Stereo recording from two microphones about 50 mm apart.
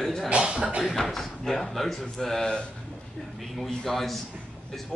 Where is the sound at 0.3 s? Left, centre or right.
Centre.